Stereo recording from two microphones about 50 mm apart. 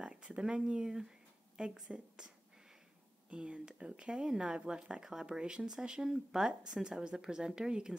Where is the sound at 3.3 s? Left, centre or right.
Centre.